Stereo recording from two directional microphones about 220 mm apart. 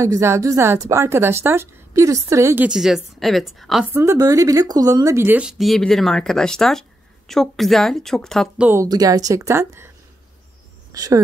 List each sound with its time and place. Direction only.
0.0 s a woman's voice: 15° right (ahead or behind)
3.9 s speech: 15° right (ahead or behind)
8.6 s a woman's voice: 15° right (ahead or behind)